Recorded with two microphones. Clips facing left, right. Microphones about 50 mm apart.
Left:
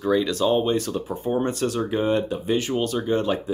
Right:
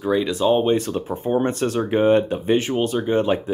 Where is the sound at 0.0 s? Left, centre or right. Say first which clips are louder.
Right 1 dB; centre.